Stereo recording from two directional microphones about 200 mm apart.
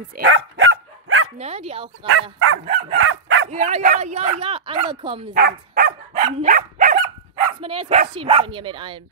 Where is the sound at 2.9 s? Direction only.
80° right.